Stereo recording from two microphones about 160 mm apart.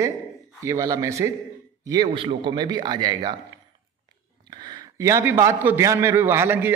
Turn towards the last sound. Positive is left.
turn(degrees=-15)  # may be behind; listen again after turning